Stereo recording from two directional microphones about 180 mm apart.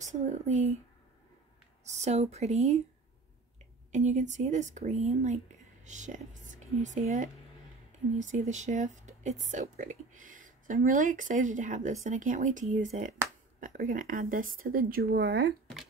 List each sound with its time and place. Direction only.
0.0 s speech: 40° right (ahead or behind)
1.9 s speech: 40° right (ahead or behind)
3.9 s speech: 40° right (ahead or behind); by 15.5 s 60° right (ahead or behind)